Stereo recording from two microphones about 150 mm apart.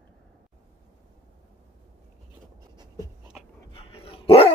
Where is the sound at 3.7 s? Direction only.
40° left (ahead or behind).